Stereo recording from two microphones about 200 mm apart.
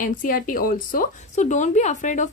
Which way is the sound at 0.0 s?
40° left (ahead or behind).